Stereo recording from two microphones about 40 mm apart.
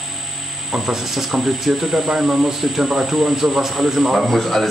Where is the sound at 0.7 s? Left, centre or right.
Centre.